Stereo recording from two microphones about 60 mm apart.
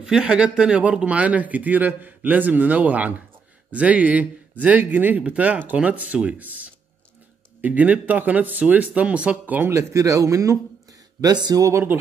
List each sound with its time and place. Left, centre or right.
0.0 s speech: centre
9.7 s speech: right